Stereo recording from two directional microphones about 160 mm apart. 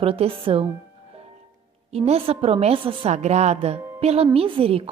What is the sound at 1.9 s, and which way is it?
A woman's voice, 40° right (ahead or behind).